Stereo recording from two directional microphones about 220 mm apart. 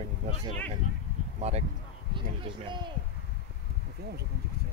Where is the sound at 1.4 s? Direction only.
30° right (ahead or behind).